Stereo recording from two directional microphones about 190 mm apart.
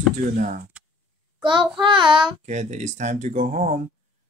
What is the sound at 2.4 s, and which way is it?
Speech, 35° right (ahead or behind).